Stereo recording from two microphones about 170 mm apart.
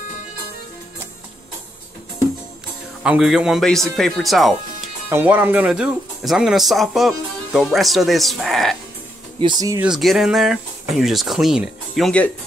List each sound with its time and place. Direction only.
3.0 s speech: 5° right (ahead or behind)
5.1 s speech: 10° right (ahead or behind)
9.4 s speech: 25° right (ahead or behind)
9.8 s speech: centre (ahead or behind)